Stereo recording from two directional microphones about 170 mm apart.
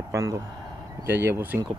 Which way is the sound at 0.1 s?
20° right (ahead or behind).